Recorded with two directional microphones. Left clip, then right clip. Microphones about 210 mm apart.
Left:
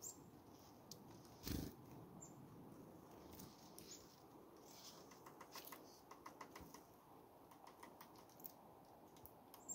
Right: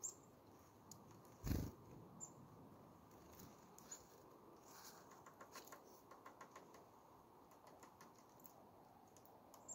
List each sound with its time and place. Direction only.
1.5 s cat: 35° right (ahead or behind)